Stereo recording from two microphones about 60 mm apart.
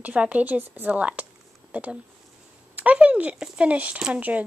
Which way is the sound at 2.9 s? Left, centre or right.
Right.